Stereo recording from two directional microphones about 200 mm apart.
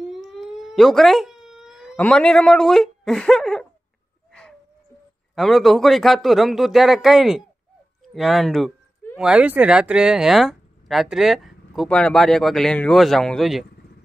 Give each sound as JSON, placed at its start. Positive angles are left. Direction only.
{"t": 0.1, "sound": "cat", "side_deg": 0}
{"t": 2.0, "sound": "speech", "side_deg": 5}
{"t": 4.3, "sound": "a sound", "side_deg": 5}
{"t": 5.3, "sound": "speech", "side_deg": 0}
{"t": 8.0, "sound": "a sound", "side_deg": 0}
{"t": 9.2, "sound": "speech", "side_deg": -5}